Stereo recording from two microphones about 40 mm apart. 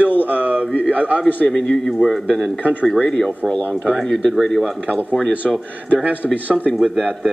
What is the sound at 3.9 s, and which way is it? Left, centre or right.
Speech, centre.